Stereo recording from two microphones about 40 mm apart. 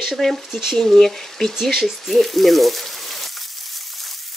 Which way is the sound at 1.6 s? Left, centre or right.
Centre.